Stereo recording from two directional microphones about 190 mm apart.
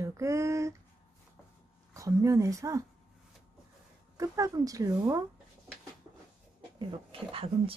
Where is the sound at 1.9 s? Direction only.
15° right (ahead or behind).